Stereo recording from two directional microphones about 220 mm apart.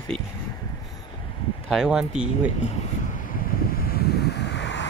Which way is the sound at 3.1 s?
40° left (ahead or behind).